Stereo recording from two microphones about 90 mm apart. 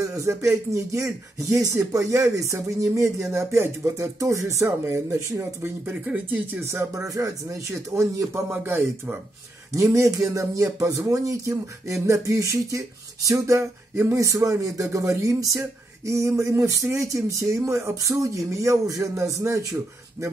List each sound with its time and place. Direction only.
0.0 s speech: 35° right (ahead or behind); by 6.6 s 20° right (ahead or behind)
6.7 s speech: 30° right (ahead or behind)
8.5 s speech: 20° right (ahead or behind)
9.8 s speech: 35° right (ahead or behind)